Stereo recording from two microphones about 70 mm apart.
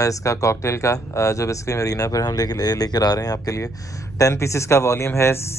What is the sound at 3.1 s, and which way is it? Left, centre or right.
Speech, left.